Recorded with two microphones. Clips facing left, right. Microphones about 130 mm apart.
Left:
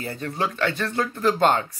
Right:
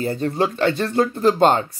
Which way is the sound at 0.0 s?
30° right (ahead or behind).